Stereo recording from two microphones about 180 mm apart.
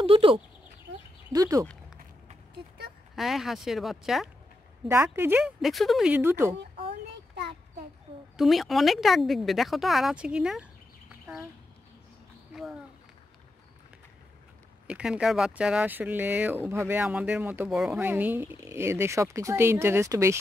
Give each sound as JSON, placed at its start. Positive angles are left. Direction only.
{"t": 0.0, "sound": "speech", "side_deg": -30}
{"t": 1.3, "sound": "speech", "side_deg": -20}
{"t": 3.2, "sound": "speech", "side_deg": 0}
{"t": 4.8, "sound": "speech", "side_deg": -15}
{"t": 8.4, "sound": "speech", "side_deg": 0}
{"t": 14.9, "sound": "speech", "side_deg": -5}